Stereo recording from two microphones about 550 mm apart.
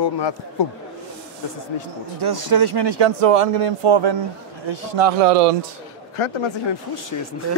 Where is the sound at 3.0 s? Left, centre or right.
Right.